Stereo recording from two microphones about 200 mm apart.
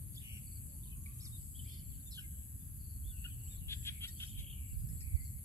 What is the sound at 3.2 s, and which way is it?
Bird, 15° left (ahead or behind).